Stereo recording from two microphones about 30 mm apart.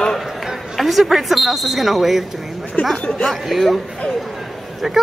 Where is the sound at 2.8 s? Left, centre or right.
Left.